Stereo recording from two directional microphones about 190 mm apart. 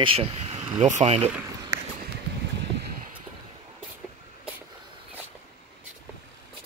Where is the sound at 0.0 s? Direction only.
30° right (ahead or behind).